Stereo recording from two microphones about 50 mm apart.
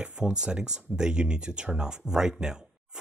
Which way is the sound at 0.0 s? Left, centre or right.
Centre.